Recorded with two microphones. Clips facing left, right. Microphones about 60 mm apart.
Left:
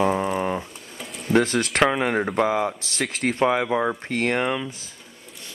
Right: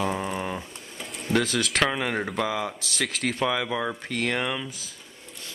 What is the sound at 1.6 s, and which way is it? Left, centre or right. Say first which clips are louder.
Speech: left 4 dB; centre.